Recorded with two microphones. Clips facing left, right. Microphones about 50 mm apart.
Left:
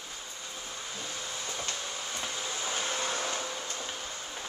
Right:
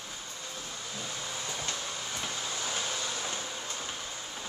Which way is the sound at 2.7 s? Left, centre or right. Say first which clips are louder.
Left 2 dB; left.